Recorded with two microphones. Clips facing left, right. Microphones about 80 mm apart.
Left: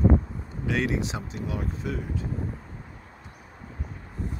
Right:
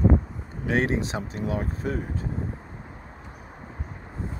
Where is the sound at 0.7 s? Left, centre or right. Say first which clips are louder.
Right 3 dB; right.